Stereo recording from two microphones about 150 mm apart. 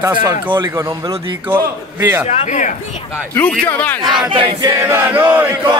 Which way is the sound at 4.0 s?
30° right (ahead or behind).